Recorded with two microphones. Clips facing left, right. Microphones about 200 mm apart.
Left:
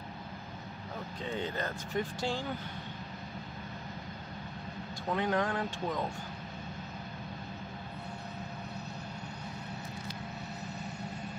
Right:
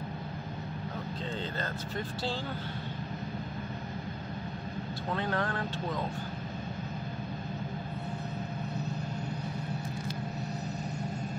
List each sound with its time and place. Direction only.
1.3 s speech: 15° left (ahead or behind)
5.1 s speech: 15° left (ahead or behind)